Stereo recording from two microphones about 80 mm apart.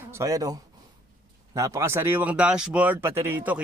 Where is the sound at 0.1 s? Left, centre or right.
Right.